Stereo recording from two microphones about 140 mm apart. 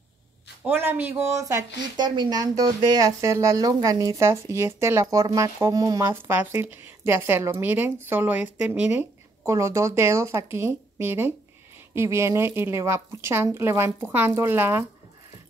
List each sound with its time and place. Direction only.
0.7 s a woman's voice: 15° right (ahead or behind)